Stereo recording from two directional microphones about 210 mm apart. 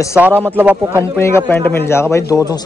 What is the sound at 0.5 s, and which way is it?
Speech, 10° right (ahead or behind).